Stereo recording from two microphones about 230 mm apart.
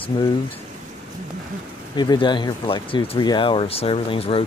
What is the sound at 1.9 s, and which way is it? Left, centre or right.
Speech, centre.